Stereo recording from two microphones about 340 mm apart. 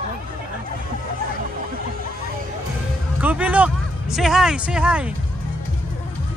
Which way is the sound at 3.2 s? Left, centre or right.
Centre.